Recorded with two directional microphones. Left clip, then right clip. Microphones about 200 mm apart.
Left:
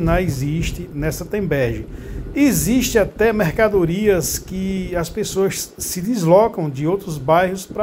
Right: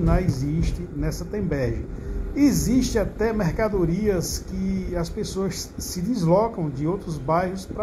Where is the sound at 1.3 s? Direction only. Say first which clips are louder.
Left 7 dB; 30° left (ahead or behind).